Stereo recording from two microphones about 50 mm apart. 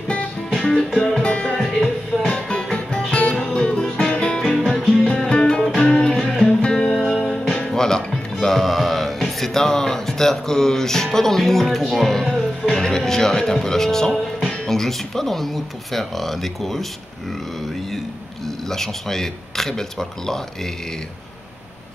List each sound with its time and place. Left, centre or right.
0.5 s music: centre
1.2 s music: left
1.6 s music: centre
2.2 s music: centre
4.6 s music: centre
6.9 s music: centre
11.9 s speech: centre
18.7 s speech: centre